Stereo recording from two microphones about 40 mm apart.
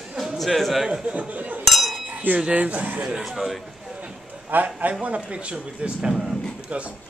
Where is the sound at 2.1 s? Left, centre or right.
Right.